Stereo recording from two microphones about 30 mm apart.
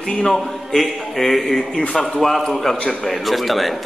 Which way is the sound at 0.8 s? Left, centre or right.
Centre.